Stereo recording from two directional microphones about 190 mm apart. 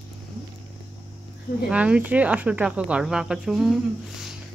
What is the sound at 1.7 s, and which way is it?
Speech, 5° right (ahead or behind).